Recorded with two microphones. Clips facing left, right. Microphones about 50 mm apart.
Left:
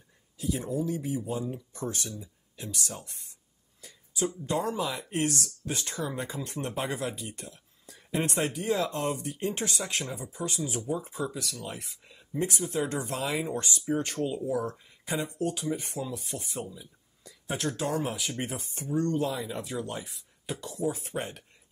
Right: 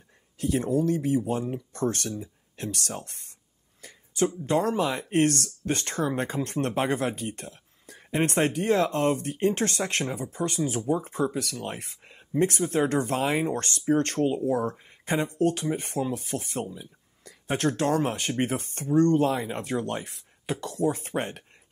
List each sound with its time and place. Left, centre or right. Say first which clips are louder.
0.4 s speech: right 6 dB; right
3.8 s a sound: right 6 dB; right
4.5 s speech: right 5 dB; right